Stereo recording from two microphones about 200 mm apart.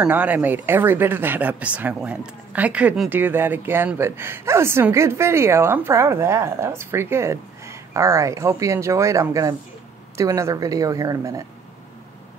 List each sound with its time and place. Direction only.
0.0 s speech: 10° right (ahead or behind)